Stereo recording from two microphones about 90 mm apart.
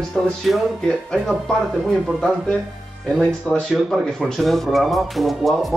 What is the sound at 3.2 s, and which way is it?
Speech, 5° left (ahead or behind).